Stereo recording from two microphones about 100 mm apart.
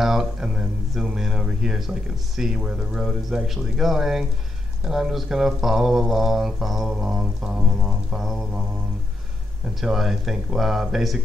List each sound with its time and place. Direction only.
0.0 s speech: 5° right (ahead or behind)
9.8 s speech: 5° right (ahead or behind)